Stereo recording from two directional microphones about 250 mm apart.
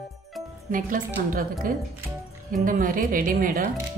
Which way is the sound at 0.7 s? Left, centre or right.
Right.